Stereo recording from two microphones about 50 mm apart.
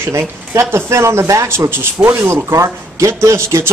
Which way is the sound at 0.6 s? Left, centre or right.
Right.